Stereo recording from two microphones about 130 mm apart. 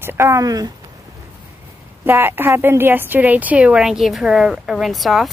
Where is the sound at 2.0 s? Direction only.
15° right (ahead or behind).